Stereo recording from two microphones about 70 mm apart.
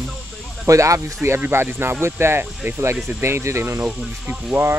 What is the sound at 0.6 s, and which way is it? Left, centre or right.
Speech, right.